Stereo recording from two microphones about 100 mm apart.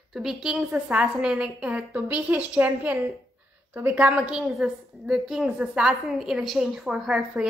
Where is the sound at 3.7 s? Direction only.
25° right (ahead or behind).